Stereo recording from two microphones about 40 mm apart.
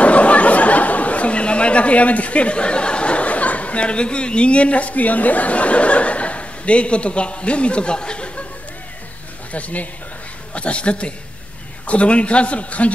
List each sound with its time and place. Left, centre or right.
0.0 s chatter: left
9.5 s a man's voice: left